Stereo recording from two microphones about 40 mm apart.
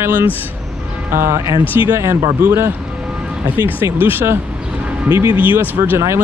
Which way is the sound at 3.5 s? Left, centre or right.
Right.